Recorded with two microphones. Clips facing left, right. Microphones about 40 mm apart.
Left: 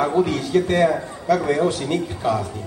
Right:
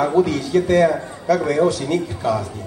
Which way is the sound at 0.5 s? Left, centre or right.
Centre.